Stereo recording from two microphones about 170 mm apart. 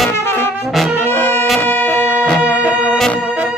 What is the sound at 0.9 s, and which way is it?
Brass instrument, 10° left (ahead or behind).